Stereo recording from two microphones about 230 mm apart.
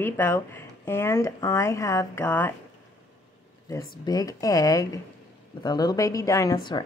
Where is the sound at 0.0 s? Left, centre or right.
Centre.